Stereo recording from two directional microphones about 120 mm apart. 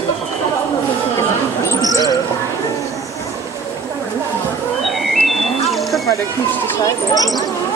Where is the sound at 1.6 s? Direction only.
25° left (ahead or behind).